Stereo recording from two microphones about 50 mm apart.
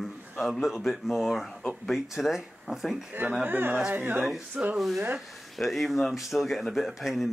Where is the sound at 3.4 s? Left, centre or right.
Right.